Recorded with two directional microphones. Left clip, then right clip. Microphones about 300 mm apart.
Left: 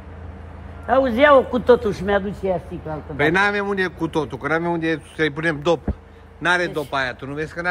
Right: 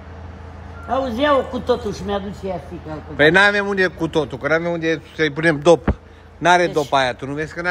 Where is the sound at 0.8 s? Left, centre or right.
Left.